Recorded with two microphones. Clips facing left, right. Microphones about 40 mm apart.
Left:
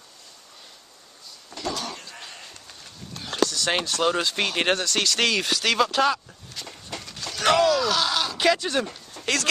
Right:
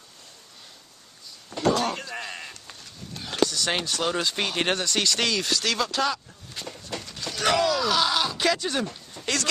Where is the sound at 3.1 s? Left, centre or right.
Centre.